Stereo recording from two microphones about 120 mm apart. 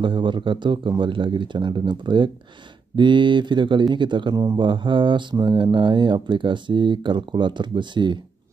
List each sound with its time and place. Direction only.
0.0 s speech: 40° right (ahead or behind)